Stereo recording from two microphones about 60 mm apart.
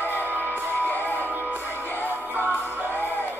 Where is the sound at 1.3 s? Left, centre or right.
Centre.